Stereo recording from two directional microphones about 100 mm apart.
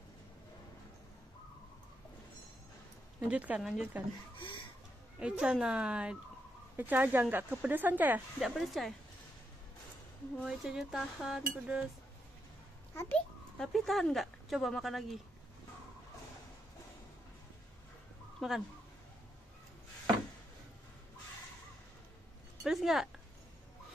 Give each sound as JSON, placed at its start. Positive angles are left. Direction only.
{"t": 3.3, "sound": "speech", "side_deg": -15}
{"t": 5.2, "sound": "speech", "side_deg": -10}
{"t": 8.4, "sound": "speech", "side_deg": 0}
{"t": 10.4, "sound": "speech", "side_deg": -5}
{"t": 12.9, "sound": "a child's voice", "side_deg": 30}
{"t": 13.6, "sound": "speech", "side_deg": 0}
{"t": 18.4, "sound": "speech", "side_deg": 0}
{"t": 22.6, "sound": "speech", "side_deg": -5}